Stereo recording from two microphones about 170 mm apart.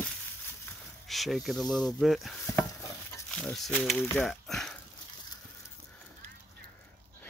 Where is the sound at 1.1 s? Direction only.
Centre (ahead or behind).